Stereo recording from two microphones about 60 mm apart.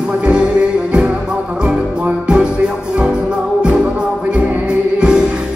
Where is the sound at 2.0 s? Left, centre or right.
Centre.